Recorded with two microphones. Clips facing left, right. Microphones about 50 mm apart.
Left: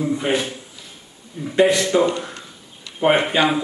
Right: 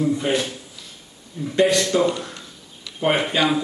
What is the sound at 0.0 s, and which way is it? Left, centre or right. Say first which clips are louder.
A man's voice: even; centre.